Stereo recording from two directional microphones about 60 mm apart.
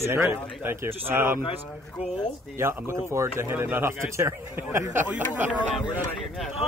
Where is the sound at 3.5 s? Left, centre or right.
Right.